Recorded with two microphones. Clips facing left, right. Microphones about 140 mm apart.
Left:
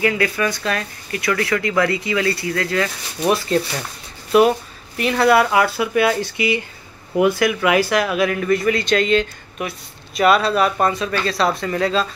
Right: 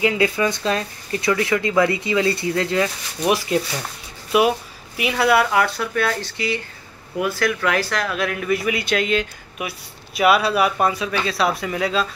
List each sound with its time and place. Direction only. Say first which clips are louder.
0.0 s speech: even; 20° right (ahead or behind)
3.3 s speech: left 2 dB; 10° right (ahead or behind)